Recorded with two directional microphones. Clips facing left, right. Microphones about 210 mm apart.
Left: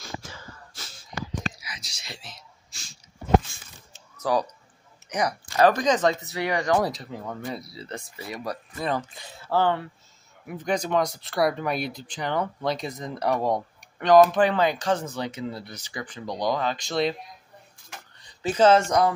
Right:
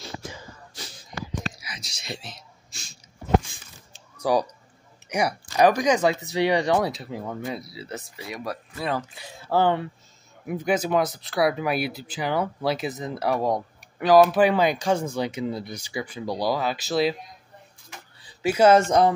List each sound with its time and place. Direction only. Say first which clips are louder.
0.2 s wheeze: right 4 dB; 15° right (ahead or behind)
1.6 s whispering: right 2 dB; 25° right (ahead or behind)
3.4 s a sound: right 1 dB; 15° right (ahead or behind)
5.1 s speech: right 1 dB; 10° right (ahead or behind)
6.8 s speech: right 1 dB; 5° right (ahead or behind)
18.2 s a sound: right 1 dB; 10° right (ahead or behind)
18.8 s speech: right 3 dB; 25° right (ahead or behind)